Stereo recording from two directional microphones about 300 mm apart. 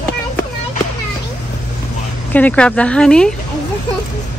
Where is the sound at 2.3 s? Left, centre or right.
Centre.